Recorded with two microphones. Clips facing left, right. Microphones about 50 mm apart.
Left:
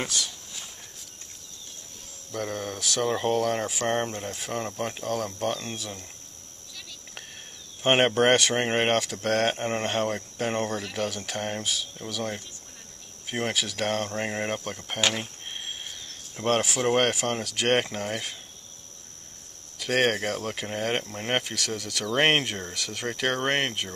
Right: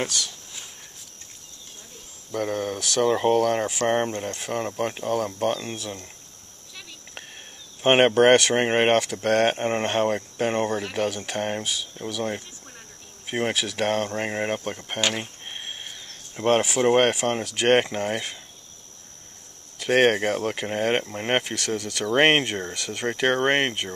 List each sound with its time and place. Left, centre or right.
0.0 s a sound: centre
2.3 s speech: centre; by 5.6 s right
5.8 s speech: centre
7.8 s speech: centre
10.8 s speech: right
13.3 s speech: centre
16.6 s speech: centre
17.1 s speech: centre
17.9 s speech: right
19.8 s speech: centre
22.1 s speech: right